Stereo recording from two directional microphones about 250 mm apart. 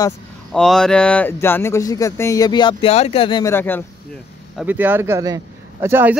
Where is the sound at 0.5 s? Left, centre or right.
Centre.